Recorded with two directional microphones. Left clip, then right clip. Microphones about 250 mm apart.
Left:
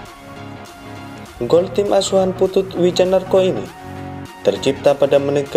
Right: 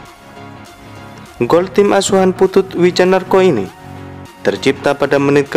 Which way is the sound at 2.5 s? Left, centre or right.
Right.